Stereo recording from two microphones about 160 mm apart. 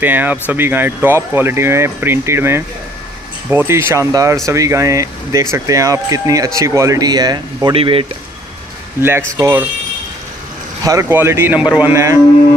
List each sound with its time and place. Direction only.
0.0 s speech: 10° right (ahead or behind)
7.7 s speech: 35° right (ahead or behind)
9.4 s speech: 15° right (ahead or behind)
10.8 s speech: 20° right (ahead or behind)